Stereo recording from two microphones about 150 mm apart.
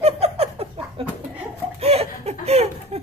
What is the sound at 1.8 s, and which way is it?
Laughter, 45° right (ahead or behind).